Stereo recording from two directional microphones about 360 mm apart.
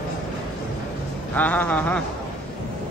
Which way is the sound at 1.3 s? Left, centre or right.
Centre.